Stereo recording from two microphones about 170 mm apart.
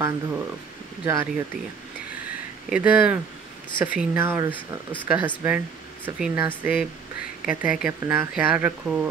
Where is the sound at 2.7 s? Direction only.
10° right (ahead or behind).